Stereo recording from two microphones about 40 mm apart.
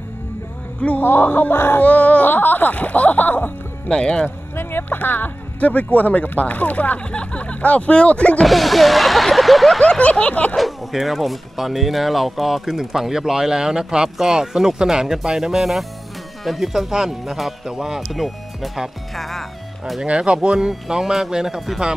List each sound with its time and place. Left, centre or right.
0.7 s speech: left
1.0 s speech: left
1.5 s a sound: left
1.8 s speech: left
3.9 s speech: left
4.6 s speech: left
5.6 s speech: left
7.1 s speech: left
8.5 s speech: centre
9.8 s speech: left
10.5 s speech: centre
18.0 s speech: centre
20.1 s speech: right